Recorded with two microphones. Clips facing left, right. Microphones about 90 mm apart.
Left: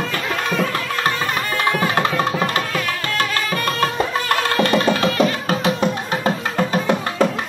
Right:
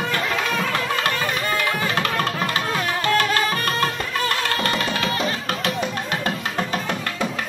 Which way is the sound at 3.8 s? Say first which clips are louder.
Left 4 dB; 30° left (ahead or behind).